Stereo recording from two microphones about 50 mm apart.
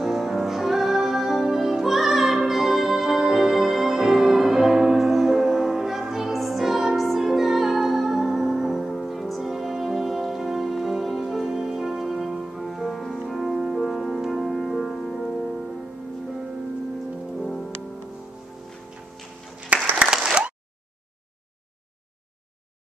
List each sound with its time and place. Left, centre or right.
0.0 s music: centre
17.4 s music: centre
19.7 s applause: right
20.2 s a sound: centre